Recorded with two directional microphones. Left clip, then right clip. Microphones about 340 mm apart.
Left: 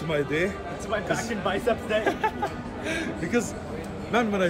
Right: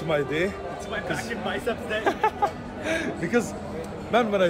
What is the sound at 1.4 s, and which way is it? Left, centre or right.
Speech, centre.